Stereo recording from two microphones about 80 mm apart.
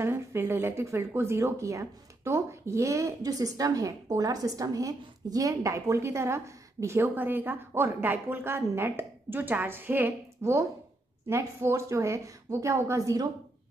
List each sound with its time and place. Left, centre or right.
0.0 s a woman's voice: right
7.0 s a woman's voice: right
10.4 s a woman's voice: right